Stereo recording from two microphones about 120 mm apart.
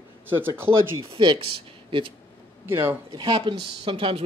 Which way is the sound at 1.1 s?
45° right (ahead or behind).